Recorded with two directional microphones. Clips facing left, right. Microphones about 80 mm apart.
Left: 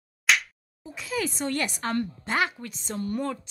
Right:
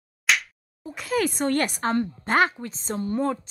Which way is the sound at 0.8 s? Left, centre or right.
Right.